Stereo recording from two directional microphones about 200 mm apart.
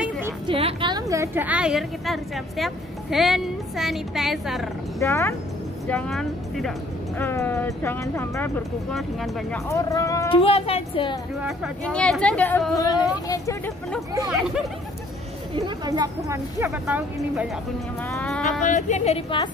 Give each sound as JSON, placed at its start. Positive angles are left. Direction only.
{"t": 0.5, "sound": "a woman's voice", "side_deg": -25}
{"t": 4.9, "sound": "speech", "side_deg": 15}
{"t": 9.7, "sound": "speech", "side_deg": 15}
{"t": 10.4, "sound": "speech", "side_deg": 30}
{"t": 11.4, "sound": "speech", "side_deg": 0}
{"t": 12.8, "sound": "speech", "side_deg": 20}
{"t": 14.3, "sound": "speech", "side_deg": -5}
{"t": 15.5, "sound": "speech", "side_deg": -20}
{"t": 18.1, "sound": "speech", "side_deg": 5}
{"t": 18.7, "sound": "a woman's voice", "side_deg": 35}